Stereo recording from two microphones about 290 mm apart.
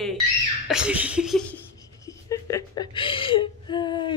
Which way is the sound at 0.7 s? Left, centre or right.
Centre.